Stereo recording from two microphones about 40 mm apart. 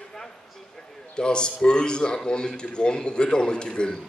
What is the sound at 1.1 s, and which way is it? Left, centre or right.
A man's voice, left.